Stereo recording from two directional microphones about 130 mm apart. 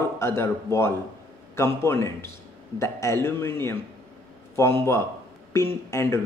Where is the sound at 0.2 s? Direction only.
20° left (ahead or behind).